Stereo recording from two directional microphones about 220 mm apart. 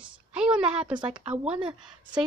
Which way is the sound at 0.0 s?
5° right (ahead or behind).